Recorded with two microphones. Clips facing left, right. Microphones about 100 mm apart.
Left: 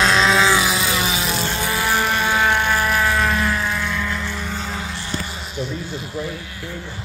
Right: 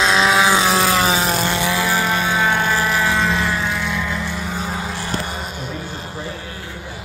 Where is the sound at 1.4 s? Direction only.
85° right.